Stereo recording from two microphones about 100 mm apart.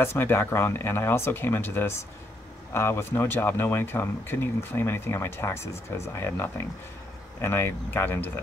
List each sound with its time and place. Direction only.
0.0 s speech: 20° left (ahead or behind)